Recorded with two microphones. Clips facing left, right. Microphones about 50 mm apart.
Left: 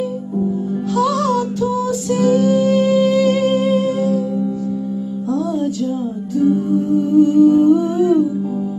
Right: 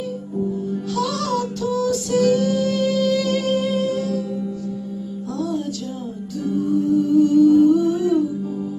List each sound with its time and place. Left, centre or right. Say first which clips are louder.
0.9 s music: left 7 dB; left
6.4 s humming: left 4 dB; left